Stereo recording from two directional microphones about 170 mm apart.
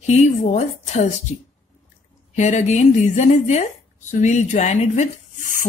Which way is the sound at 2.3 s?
45° left (ahead or behind).